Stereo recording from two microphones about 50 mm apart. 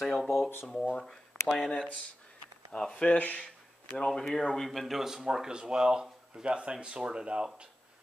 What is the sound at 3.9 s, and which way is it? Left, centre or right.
Speech, centre.